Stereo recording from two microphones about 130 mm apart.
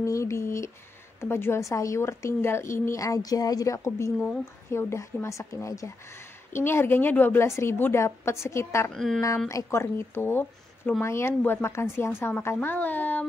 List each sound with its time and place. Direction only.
0.0 s speech: 25° left (ahead or behind)
8.9 s speech: centre (ahead or behind)
9.5 s a woman's voice: 25° left (ahead or behind)